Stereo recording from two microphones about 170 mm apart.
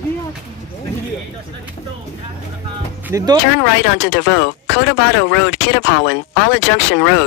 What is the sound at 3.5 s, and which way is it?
Speech, 85° left.